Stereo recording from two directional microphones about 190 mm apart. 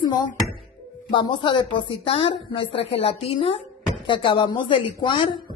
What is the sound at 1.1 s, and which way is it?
A woman's voice, 25° left (ahead or behind).